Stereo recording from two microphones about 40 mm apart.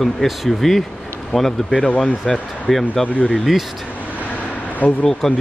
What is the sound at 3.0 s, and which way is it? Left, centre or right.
Speech, left.